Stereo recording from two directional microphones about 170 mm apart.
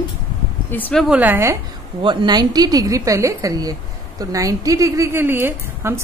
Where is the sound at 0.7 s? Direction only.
5° left (ahead or behind); by 1.6 s 15° right (ahead or behind).